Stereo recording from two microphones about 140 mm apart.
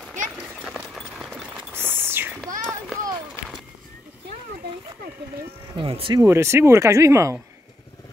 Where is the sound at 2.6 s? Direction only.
5° left (ahead or behind).